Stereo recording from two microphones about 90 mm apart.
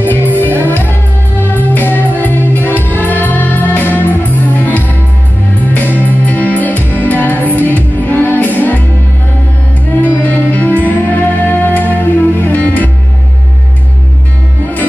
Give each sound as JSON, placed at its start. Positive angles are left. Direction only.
{"t": 0.7, "sound": "music", "side_deg": 20}
{"t": 10.0, "sound": "music", "side_deg": 20}